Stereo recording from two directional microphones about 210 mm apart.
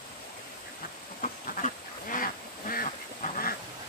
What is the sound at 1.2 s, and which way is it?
Duck, 40° left (ahead or behind).